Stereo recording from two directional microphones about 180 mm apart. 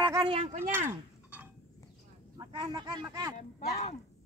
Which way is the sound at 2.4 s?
25° right (ahead or behind).